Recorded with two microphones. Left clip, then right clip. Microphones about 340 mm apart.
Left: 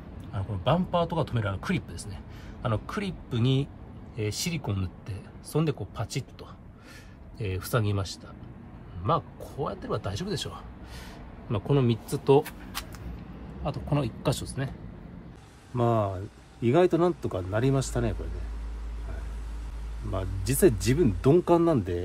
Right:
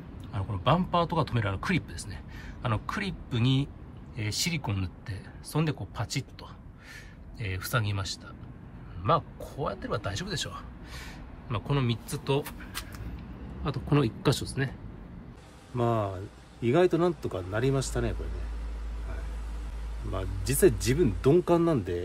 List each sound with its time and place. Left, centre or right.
0.3 s speech: centre
7.3 s speech: centre
13.7 s speech: centre
15.7 s speech: centre
20.1 s speech: centre